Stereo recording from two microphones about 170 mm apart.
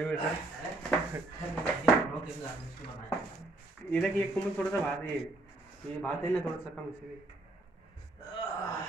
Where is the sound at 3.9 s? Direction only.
5° left (ahead or behind).